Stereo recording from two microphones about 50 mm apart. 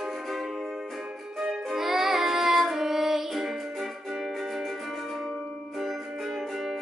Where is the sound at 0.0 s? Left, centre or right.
Centre.